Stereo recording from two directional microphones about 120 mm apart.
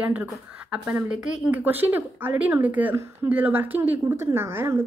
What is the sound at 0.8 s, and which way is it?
A woman's voice, 10° right (ahead or behind).